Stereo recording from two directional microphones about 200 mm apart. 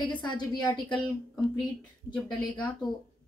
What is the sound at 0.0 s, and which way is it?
Speech, 20° left (ahead or behind).